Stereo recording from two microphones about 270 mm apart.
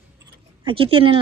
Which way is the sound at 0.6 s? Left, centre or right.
Centre.